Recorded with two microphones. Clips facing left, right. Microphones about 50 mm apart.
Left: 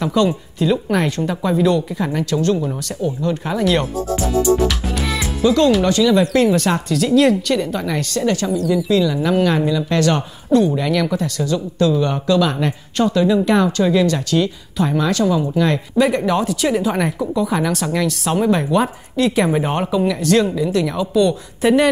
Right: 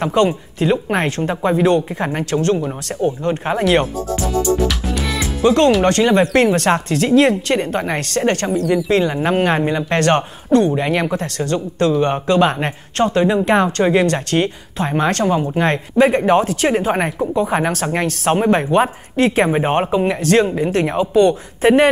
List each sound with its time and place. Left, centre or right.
0.0 s speech: right
3.8 s music: centre
5.4 s speech: right